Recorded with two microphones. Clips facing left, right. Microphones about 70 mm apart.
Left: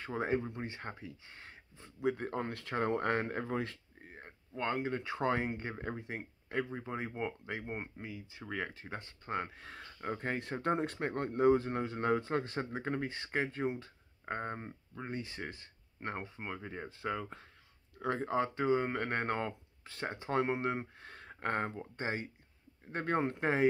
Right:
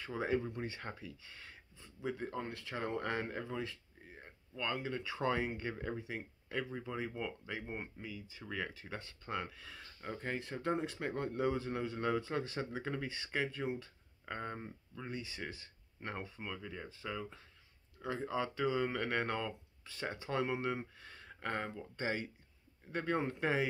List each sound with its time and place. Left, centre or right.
0.0 s speech: left
2.0 s speech: left
8.0 s speech: left